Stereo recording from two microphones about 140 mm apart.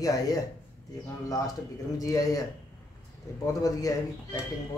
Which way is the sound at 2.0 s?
25° left (ahead or behind).